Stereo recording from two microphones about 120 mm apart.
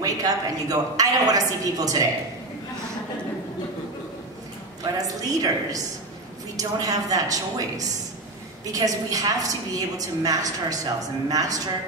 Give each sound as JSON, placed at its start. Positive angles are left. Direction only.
{"t": 0.0, "sound": "a woman's voice", "side_deg": -30}
{"t": 4.9, "sound": "a woman's voice", "side_deg": -30}